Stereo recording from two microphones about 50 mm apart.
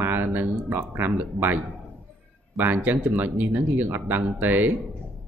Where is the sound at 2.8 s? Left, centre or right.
Right.